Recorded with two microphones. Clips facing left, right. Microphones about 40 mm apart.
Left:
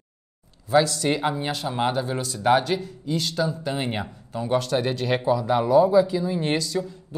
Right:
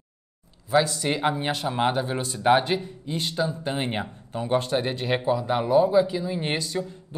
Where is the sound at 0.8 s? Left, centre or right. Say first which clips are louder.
Left 1 dB; right.